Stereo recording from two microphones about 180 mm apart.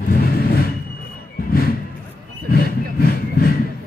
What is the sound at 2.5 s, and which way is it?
Vehicle, 55° left (ahead or behind).